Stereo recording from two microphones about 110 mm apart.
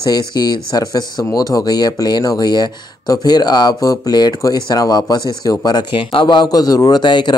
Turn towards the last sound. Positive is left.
turn(degrees=45)  # may be behind; listen again after turning